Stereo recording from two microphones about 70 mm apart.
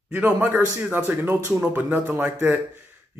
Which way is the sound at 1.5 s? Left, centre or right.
Right.